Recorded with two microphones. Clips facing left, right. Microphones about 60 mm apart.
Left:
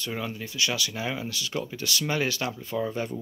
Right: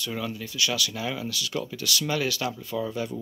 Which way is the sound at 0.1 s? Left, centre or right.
Left.